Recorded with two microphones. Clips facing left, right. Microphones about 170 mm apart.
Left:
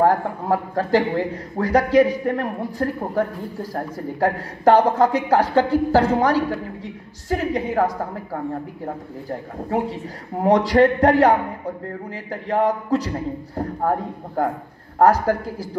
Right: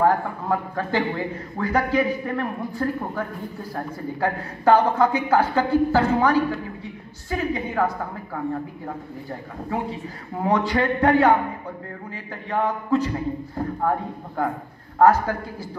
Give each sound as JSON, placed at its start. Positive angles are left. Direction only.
{"t": 0.0, "sound": "a woman's voice", "side_deg": 35}
{"t": 10.4, "sound": "a woman's voice", "side_deg": 40}